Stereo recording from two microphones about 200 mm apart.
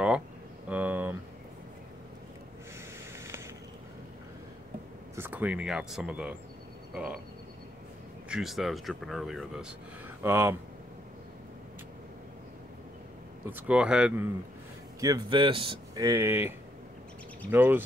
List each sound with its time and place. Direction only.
0.7 s a sound: 10° right (ahead or behind)
5.1 s speech: 10° right (ahead or behind)
6.9 s a sound: 5° right (ahead or behind)
8.3 s speech: centre (ahead or behind)
13.5 s speech: 10° right (ahead or behind)
15.0 s speech: 20° right (ahead or behind)